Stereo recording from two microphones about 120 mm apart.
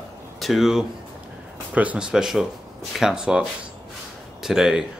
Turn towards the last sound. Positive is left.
turn(degrees=-5)  # may be behind; listen again after turning